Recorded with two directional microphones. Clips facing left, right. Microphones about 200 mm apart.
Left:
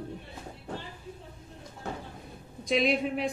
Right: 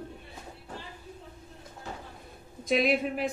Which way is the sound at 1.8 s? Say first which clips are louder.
Left 4 dB; 60° left (ahead or behind).